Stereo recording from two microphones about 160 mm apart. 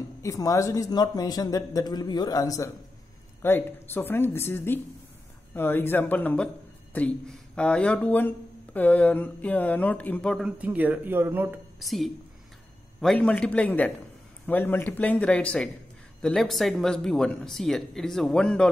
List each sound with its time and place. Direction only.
0.2 s speech: 20° left (ahead or behind); by 10.5 s 5° left (ahead or behind)
10.6 s speech: 10° right (ahead or behind)
11.8 s speech: centre (ahead or behind)